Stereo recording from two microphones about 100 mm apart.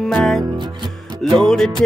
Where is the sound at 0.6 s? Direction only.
50° right (ahead or behind).